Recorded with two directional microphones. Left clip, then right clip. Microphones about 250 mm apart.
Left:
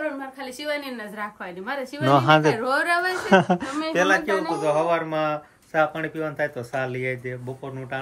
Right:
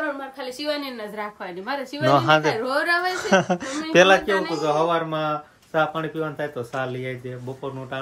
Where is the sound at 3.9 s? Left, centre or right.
Right.